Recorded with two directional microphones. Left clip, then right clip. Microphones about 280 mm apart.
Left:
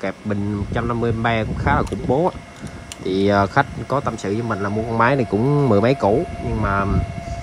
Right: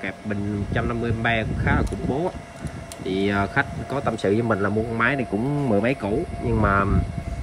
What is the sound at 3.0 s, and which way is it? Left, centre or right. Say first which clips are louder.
Speech: left 6 dB; centre.